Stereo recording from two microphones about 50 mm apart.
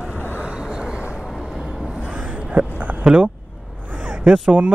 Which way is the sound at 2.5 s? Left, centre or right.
Right.